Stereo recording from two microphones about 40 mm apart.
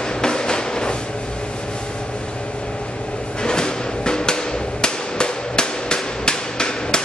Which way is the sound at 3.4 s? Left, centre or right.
Left.